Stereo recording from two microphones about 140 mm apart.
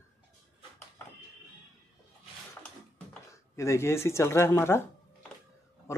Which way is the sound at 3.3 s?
20° left (ahead or behind).